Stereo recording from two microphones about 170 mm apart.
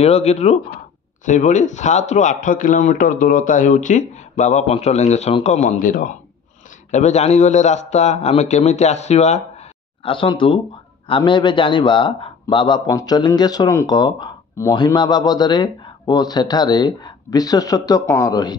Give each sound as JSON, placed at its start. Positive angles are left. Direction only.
{"t": 0.0, "sound": "a man's voice", "side_deg": 40}
{"t": 6.9, "sound": "a man's voice", "side_deg": 40}